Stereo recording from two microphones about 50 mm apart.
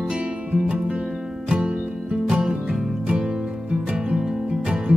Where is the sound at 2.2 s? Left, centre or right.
Centre.